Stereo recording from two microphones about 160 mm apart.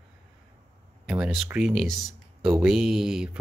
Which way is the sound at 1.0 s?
5° right (ahead or behind).